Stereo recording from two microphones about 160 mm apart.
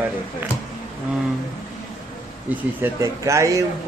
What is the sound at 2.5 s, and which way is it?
Speech, 10° right (ahead or behind).